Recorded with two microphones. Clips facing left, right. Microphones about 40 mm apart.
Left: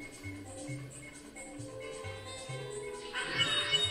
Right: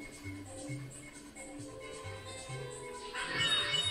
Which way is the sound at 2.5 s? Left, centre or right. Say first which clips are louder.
Left 4 dB; centre.